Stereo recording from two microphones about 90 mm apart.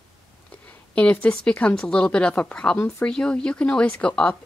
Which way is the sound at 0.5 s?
15° left (ahead or behind).